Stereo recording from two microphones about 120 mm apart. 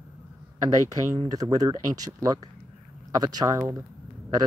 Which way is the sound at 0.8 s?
30° right (ahead or behind).